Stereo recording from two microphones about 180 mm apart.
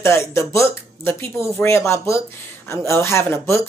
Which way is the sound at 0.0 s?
15° left (ahead or behind).